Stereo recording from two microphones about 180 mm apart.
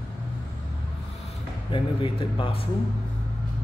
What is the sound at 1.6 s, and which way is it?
Speech, 30° left (ahead or behind).